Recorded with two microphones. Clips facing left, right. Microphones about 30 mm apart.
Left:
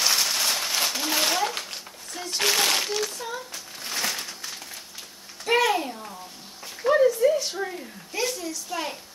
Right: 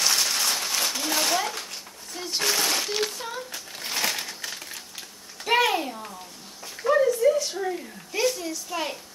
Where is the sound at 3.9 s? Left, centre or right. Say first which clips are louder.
Right 1 dB; right.